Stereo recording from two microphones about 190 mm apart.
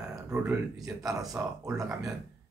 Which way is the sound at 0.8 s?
20° right (ahead or behind).